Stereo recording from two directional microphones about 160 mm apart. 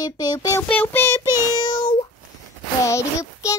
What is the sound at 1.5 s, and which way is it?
Meow, 30° left (ahead or behind).